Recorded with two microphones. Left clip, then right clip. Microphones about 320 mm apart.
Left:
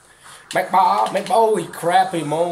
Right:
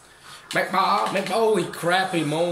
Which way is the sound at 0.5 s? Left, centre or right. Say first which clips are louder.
Left 5 dB; centre.